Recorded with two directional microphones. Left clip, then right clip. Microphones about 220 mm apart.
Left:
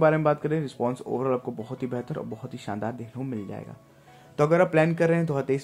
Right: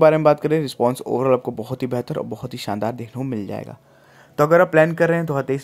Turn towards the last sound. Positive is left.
turn(degrees=-15)  # may be behind; listen again after turning